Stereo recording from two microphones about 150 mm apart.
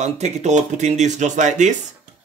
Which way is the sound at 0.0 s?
50° right (ahead or behind).